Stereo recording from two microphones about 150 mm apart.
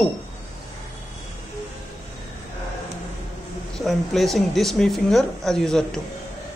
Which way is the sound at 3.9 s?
Centre (ahead or behind).